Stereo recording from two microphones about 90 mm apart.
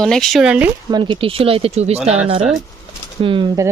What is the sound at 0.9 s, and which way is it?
Speech, 60° right (ahead or behind).